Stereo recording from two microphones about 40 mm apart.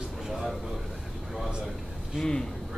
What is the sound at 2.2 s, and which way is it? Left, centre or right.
Speech, centre.